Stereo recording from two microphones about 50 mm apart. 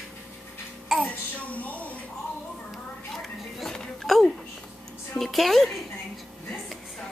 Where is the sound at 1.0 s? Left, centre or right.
Left.